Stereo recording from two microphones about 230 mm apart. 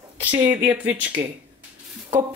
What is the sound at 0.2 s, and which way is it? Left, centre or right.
Speech, centre.